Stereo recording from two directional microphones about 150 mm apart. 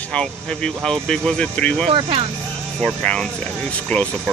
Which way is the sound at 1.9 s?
35° right (ahead or behind).